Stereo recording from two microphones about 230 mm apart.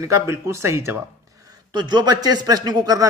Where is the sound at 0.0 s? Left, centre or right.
Centre.